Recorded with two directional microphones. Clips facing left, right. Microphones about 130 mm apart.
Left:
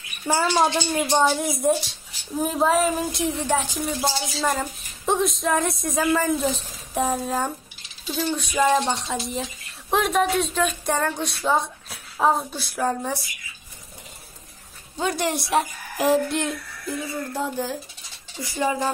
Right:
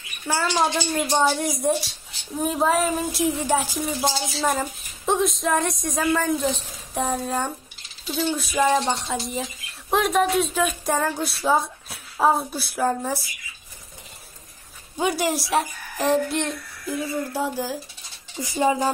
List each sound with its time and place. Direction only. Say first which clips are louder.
0.3 s a woman's voice: left 2 dB; 15° left (ahead or behind)
1.0 s speech: left 1 dB; 5° right (ahead or behind)
15.0 s a woman's voice: right 2 dB; 15° right (ahead or behind)
15.2 s speech: even; centre (ahead or behind)
18.4 s speech: right 3 dB; 20° right (ahead or behind)